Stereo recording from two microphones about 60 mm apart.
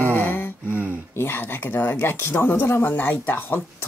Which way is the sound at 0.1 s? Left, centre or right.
Left.